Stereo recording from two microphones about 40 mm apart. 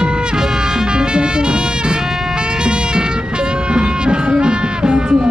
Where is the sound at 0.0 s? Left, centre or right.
Right.